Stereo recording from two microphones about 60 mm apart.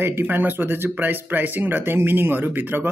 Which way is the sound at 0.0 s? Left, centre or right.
Right.